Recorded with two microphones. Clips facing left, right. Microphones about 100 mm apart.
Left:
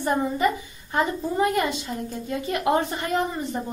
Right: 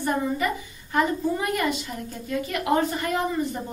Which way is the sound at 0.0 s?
30° left (ahead or behind).